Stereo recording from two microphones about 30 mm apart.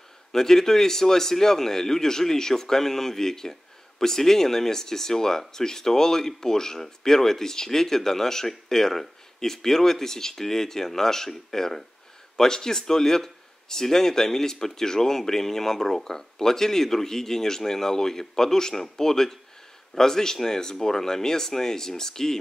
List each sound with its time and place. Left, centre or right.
0.3 s speech: centre